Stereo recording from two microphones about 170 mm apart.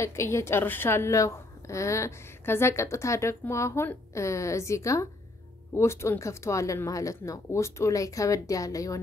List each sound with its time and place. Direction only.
0.0 s a woman's voice: 15° left (ahead or behind)